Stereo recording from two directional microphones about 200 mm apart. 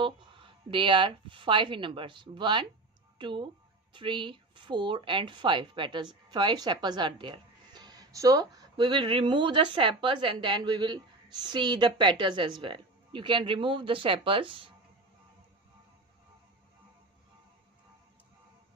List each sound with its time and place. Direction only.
0.0 s speech: 25° right (ahead or behind)